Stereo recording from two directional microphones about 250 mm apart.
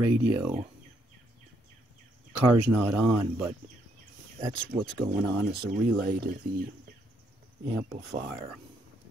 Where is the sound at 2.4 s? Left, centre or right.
Centre.